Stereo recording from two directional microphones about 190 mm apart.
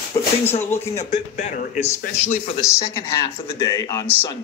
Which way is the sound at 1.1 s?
40° left (ahead or behind).